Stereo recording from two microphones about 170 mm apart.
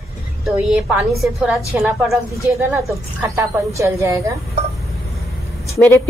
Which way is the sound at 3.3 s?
15° right (ahead or behind).